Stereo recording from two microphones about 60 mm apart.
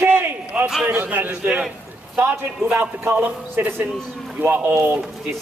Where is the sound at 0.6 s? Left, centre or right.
Right.